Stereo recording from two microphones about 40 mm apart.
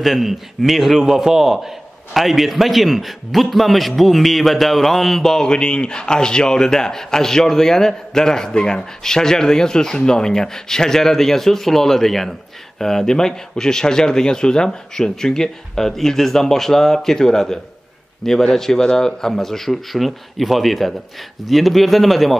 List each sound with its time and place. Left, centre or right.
0.0 s a man's voice: centre